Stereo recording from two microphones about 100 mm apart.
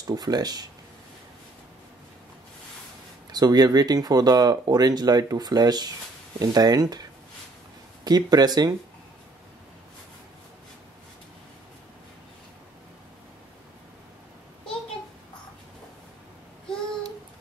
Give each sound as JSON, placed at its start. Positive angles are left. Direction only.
{"t": 0.0, "sound": "speech", "side_deg": -40}
{"t": 3.3, "sound": "speech", "side_deg": -40}
{"t": 8.0, "sound": "speech", "side_deg": -40}